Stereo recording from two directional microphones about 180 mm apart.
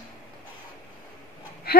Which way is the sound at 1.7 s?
60° left (ahead or behind).